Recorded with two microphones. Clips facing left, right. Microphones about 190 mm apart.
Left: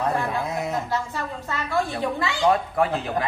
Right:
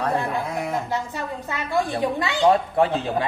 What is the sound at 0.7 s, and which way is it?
A woman's voice, 15° right (ahead or behind).